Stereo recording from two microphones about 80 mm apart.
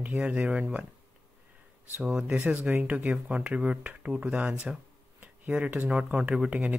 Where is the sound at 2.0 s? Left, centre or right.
Centre.